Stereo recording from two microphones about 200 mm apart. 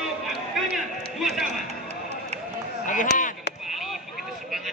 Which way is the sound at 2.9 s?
40° left (ahead or behind).